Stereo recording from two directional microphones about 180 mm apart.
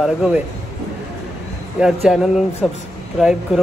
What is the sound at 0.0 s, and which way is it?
Speech, 5° right (ahead or behind).